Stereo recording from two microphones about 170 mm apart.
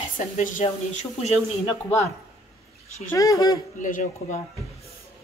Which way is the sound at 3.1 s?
20° left (ahead or behind).